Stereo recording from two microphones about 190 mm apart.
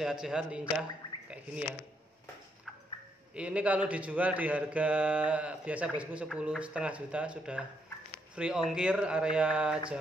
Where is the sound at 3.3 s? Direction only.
5° right (ahead or behind).